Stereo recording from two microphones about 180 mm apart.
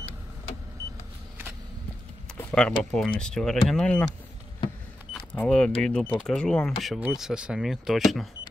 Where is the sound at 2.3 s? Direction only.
5° left (ahead or behind).